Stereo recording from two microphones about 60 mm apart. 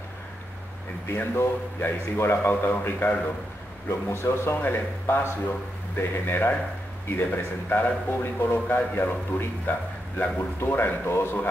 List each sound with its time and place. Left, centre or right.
1.0 s a man's voice: left
3.9 s a man's voice: left
4.6 s a man's voice: left
8.5 s a man's voice: left
8.9 s a man's voice: left